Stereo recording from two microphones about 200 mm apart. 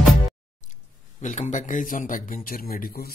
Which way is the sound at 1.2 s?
40° left (ahead or behind).